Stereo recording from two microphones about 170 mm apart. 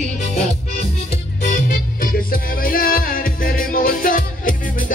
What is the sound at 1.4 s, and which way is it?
Music, 55° left (ahead or behind).